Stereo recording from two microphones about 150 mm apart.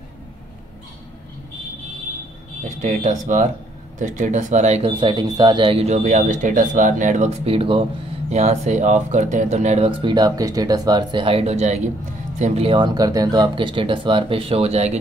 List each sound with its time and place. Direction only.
2.8 s speech: 55° right (ahead or behind)
5.0 s speech: 30° right (ahead or behind)
6.0 s speech: 55° right (ahead or behind)
9.8 s speech: 35° right (ahead or behind)